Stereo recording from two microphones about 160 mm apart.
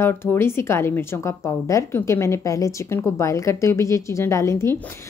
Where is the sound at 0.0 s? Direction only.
15° left (ahead or behind).